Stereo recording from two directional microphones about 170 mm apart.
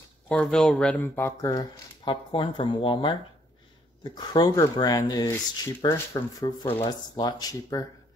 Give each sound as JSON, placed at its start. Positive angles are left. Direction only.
{"t": 0.3, "sound": "speech", "side_deg": 5}